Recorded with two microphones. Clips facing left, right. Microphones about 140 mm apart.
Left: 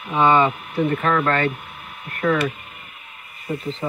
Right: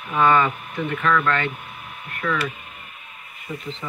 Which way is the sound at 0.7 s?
35° left (ahead or behind).